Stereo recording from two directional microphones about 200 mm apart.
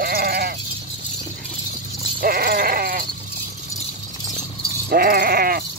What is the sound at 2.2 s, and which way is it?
Sheep, 50° right (ahead or behind).